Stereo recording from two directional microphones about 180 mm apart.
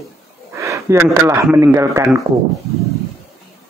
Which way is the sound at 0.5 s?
15° right (ahead or behind).